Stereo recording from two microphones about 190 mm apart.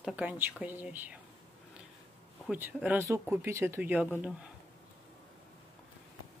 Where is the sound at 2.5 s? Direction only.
10° right (ahead or behind).